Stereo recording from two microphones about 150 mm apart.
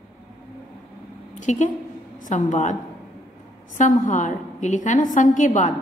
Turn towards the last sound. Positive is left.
turn(degrees=55)  # may be behind; listen again after turning